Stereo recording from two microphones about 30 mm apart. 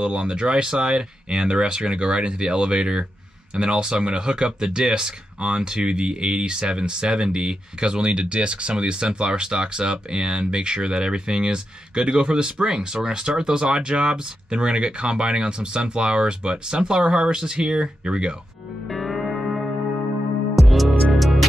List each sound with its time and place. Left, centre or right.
0.0 s speech: right
12.6 s speech: right
18.9 s music: centre
20.5 s music: centre